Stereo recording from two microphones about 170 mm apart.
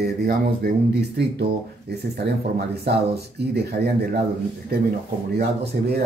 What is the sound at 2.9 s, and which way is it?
Speech, 75° right (ahead or behind).